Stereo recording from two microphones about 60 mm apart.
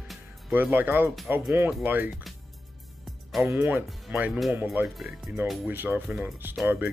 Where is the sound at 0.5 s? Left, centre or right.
Right.